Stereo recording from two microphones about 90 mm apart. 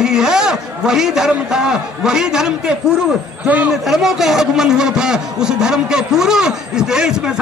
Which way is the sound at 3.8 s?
5° right (ahead or behind).